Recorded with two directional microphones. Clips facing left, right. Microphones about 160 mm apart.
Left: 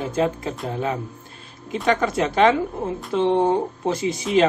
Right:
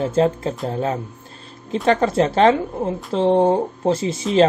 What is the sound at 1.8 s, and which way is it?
Speech, 30° right (ahead or behind).